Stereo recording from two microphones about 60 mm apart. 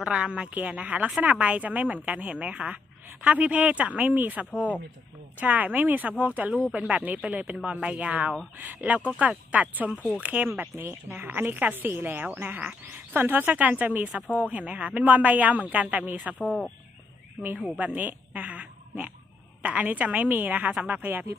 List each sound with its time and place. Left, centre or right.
0.0 s speech: centre
16.3 s speech: left
17.7 s a woman's voice: right